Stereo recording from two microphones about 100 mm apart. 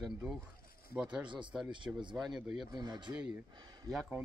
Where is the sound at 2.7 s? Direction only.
40° right (ahead or behind).